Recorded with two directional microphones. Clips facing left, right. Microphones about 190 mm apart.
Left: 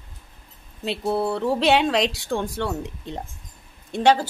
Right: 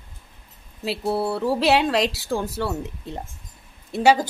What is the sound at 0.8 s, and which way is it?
A woman's voice, 5° right (ahead or behind).